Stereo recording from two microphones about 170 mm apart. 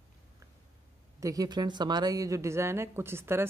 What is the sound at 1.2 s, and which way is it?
Speech, 20° right (ahead or behind).